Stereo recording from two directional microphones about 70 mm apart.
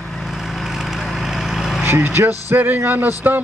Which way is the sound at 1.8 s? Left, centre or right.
Right.